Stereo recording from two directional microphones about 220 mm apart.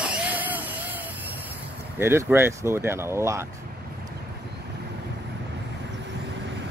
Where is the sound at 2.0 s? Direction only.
10° right (ahead or behind).